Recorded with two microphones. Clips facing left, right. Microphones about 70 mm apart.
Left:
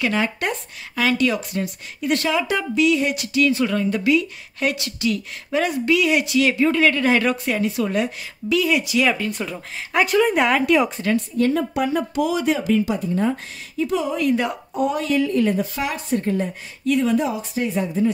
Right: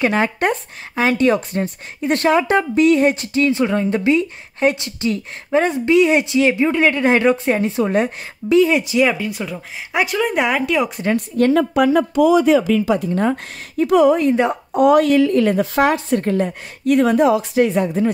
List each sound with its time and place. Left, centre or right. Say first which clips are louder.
0.0 s speech: right 5 dB; right
9.1 s speech: right 1 dB; centre
11.1 s a woman's voice: right 6 dB; right
12.9 s a woman's voice: right 4 dB; right
14.1 s speech: right 5 dB; right
14.7 s a woman's voice: right 10 dB; right
16.9 s speech: right 6 dB; right